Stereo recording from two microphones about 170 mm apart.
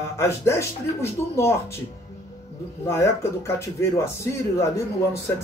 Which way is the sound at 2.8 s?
15° left (ahead or behind).